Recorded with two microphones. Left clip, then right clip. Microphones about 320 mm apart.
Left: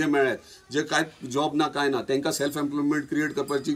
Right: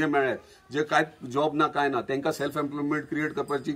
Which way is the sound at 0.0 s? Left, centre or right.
Centre.